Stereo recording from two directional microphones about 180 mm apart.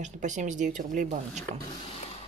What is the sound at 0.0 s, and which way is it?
A woman's voice, 40° right (ahead or behind).